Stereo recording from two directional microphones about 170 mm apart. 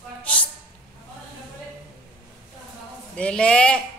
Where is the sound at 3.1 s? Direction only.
5° left (ahead or behind).